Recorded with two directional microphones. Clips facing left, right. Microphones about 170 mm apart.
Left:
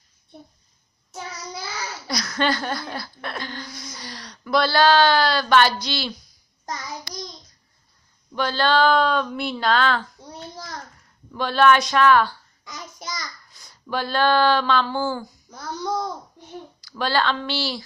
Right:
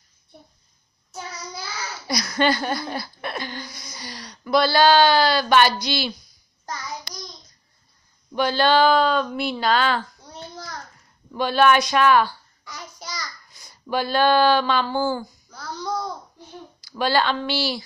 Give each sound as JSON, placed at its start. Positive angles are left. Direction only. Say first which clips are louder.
{"t": 2.0, "sound": "a woman's voice", "louder": "right 3 dB", "side_deg": -5}
{"t": 8.3, "sound": "speech", "louder": "right 2 dB", "side_deg": -15}
{"t": 11.3, "sound": "a woman's voice", "louder": "even", "side_deg": -10}
{"t": 13.6, "sound": "speech", "louder": "right 2 dB", "side_deg": -15}
{"t": 15.5, "sound": "babbling", "louder": "left 2 dB", "side_deg": 20}
{"t": 16.8, "sound": "a woman's voice", "louder": "right 2 dB", "side_deg": -10}